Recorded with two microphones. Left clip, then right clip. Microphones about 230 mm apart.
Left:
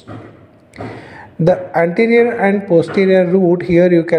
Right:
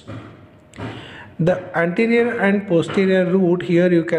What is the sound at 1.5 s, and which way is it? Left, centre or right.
Speech, centre.